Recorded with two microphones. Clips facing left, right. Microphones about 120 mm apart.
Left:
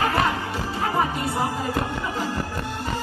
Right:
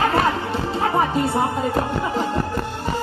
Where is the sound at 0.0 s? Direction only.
25° right (ahead or behind).